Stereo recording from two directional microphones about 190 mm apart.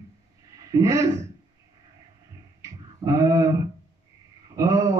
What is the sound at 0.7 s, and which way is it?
Speech, 15° right (ahead or behind).